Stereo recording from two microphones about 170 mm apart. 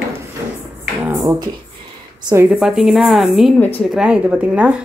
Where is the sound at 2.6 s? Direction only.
Centre (ahead or behind).